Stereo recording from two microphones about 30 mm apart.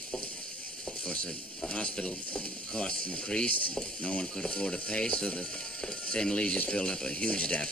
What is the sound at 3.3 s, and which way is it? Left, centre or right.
Speech, left.